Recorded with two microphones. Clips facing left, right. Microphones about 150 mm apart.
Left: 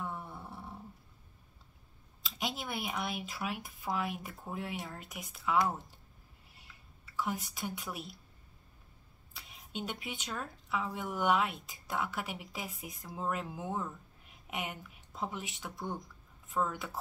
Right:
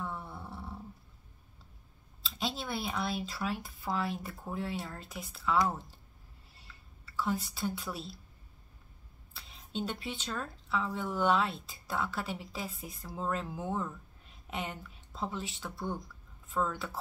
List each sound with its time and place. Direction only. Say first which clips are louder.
0.0 s dog: right 1 dB; 15° left (ahead or behind)
2.2 s speech: right 2 dB; 15° left (ahead or behind)
7.2 s speech: right 3 dB; 15° left (ahead or behind)
9.3 s speech: right 4 dB; 10° left (ahead or behind)